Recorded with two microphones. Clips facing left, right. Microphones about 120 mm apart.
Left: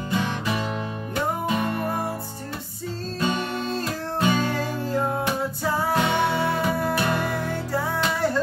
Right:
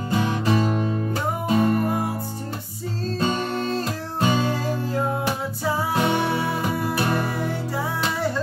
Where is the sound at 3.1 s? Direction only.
35° right (ahead or behind).